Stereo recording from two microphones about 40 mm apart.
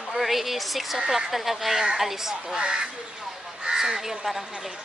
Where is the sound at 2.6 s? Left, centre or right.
Centre.